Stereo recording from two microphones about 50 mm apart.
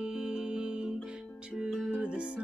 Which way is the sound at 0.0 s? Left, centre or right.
Centre.